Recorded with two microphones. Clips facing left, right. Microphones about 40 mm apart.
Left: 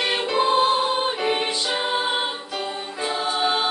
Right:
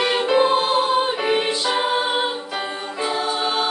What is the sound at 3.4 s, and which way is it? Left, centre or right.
Choir, centre.